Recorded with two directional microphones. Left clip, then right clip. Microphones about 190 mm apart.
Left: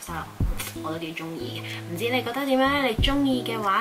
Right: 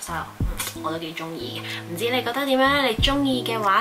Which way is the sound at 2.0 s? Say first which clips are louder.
Right 2 dB; 5° left (ahead or behind).